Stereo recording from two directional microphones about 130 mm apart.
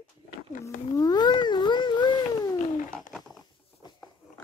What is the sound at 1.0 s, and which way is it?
Cat, 30° left (ahead or behind).